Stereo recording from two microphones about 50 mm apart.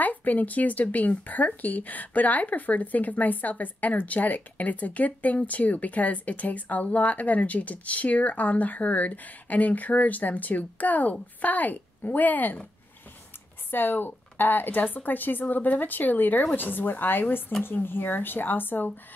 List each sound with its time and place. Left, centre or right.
0.0 s speech: left
13.7 s speech: left